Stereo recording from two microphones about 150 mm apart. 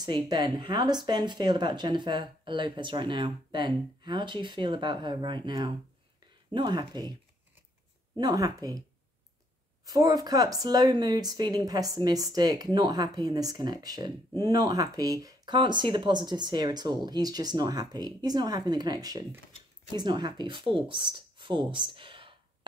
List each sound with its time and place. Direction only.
0.0 s speech: 30° right (ahead or behind)
8.2 s speech: 25° right (ahead or behind)
9.8 s speech: 25° right (ahead or behind)